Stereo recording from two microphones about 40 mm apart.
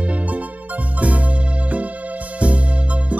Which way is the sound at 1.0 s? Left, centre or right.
Right.